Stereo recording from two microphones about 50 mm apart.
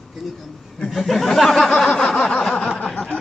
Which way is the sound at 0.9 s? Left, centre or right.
Centre.